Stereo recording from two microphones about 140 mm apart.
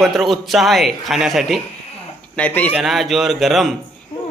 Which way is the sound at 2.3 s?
10° left (ahead or behind).